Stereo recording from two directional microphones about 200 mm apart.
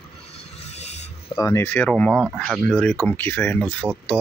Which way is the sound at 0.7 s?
35° left (ahead or behind).